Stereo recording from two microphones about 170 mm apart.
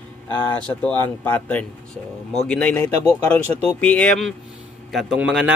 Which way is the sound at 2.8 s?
35° right (ahead or behind).